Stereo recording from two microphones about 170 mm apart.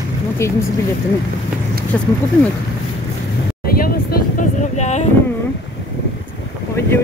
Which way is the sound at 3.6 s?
60° left (ahead or behind).